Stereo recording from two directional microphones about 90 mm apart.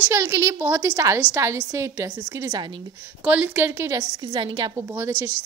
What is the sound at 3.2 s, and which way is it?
Speech, 15° right (ahead or behind).